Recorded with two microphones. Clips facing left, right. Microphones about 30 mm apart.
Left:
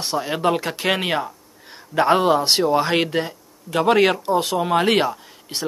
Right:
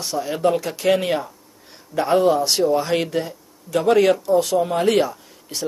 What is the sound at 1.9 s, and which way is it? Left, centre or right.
A man's voice, left.